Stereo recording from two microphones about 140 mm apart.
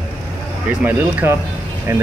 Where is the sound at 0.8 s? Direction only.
15° right (ahead or behind).